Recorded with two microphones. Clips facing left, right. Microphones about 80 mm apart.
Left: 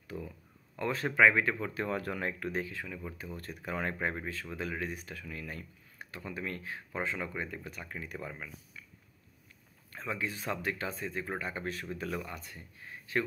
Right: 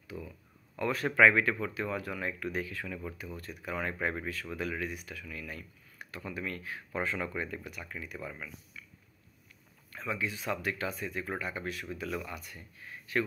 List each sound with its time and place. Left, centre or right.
0.1 s a sound: centre
0.7 s speech: left
1.7 s speech: left
2.9 s speech: centre
3.3 s speech: left
3.7 s speech: left
6.9 s speech: centre
7.6 s speech: left
9.9 s speech: left